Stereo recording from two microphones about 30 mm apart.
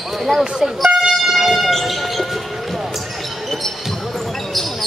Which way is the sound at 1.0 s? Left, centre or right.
Centre.